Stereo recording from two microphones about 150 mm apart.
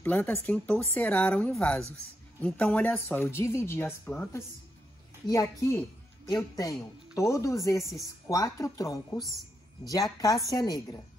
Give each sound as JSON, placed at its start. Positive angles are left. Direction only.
{"t": 0.0, "sound": "a woman's voice", "side_deg": 10}
{"t": 9.2, "sound": "a woman's voice", "side_deg": 0}
{"t": 10.5, "sound": "a woman's voice", "side_deg": 25}